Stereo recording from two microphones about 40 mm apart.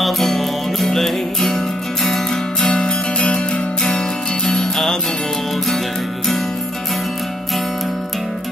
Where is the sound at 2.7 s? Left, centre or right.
Left; by 6.4 s centre.